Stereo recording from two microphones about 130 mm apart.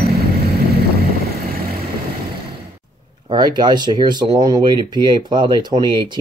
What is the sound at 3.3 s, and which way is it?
Speech, 35° right (ahead or behind).